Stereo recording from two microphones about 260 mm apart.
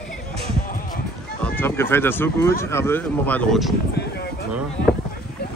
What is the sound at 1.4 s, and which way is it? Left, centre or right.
Speech, centre.